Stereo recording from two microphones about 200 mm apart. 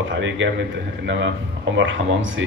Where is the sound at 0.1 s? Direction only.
65° right (ahead or behind).